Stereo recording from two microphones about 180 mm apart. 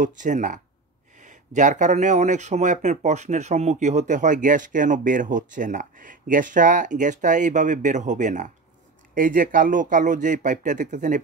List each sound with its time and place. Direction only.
0.2 s speech: 45° right (ahead or behind)